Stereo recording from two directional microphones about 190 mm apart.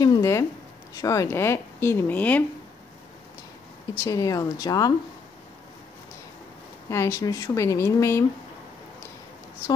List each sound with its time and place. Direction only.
0.0 s zipper: 20° left (ahead or behind)
1.0 s speech: 15° left (ahead or behind)
3.9 s speech: 15° left (ahead or behind)
6.9 s speech: 15° left (ahead or behind)